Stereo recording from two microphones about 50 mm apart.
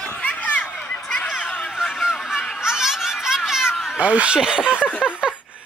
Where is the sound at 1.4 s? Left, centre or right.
Left.